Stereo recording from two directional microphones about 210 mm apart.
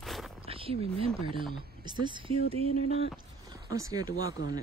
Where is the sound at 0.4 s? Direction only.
25° right (ahead or behind).